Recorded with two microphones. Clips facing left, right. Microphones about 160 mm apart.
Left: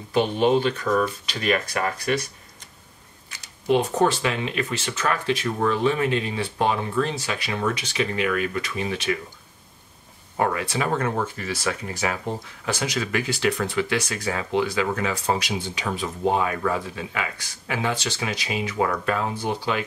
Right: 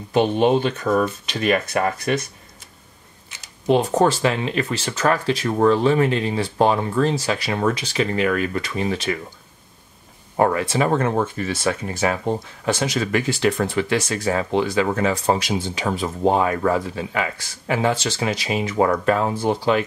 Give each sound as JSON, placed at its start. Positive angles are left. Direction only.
{"t": 0.1, "sound": "speech", "side_deg": -15}
{"t": 0.8, "sound": "cutlery", "side_deg": -25}
{"t": 3.3, "sound": "a sound", "side_deg": -25}
{"t": 3.6, "sound": "speech", "side_deg": -35}
{"t": 10.3, "sound": "speech", "side_deg": -35}
{"t": 11.4, "sound": "cutlery", "side_deg": -30}
{"t": 12.7, "sound": "speech", "side_deg": -30}